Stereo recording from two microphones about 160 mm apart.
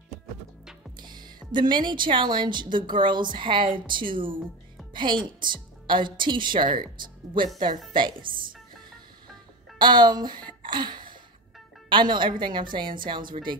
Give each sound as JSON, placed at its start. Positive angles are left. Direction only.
{"t": 0.9, "sound": "music", "side_deg": -25}
{"t": 1.5, "sound": "a woman's voice", "side_deg": -30}
{"t": 8.2, "sound": "speech", "side_deg": -60}
{"t": 9.8, "sound": "a woman's voice", "side_deg": -30}